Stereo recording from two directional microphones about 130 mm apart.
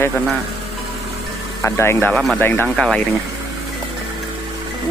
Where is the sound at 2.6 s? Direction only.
Centre (ahead or behind).